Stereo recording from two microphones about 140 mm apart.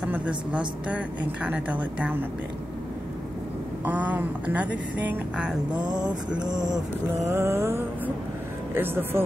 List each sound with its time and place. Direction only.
0.0 s a woman's voice: 10° right (ahead or behind)
3.8 s speech: 10° right (ahead or behind)
6.4 s music: 30° right (ahead or behind)
7.2 s music: 20° right (ahead or behind)
8.7 s speech: 15° right (ahead or behind)